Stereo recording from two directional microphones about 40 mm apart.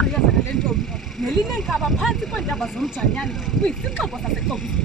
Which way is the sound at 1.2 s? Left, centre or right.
Centre.